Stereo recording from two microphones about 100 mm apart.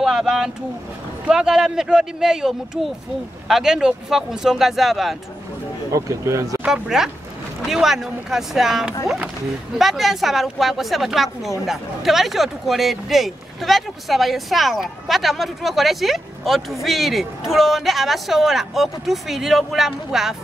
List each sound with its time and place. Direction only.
0.0 s vehicle: 5° right (ahead or behind)
1.2 s speech: 5° right (ahead or behind)
5.9 s speech: 30° right (ahead or behind)
6.6 s speech: 5° right (ahead or behind)